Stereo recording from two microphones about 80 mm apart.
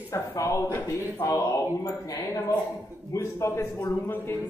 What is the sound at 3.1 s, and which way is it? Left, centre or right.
Speech, left.